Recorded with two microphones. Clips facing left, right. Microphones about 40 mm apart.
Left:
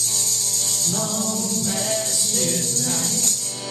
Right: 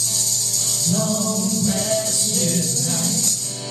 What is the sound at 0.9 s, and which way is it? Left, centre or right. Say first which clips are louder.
Music: right 5 dB; left.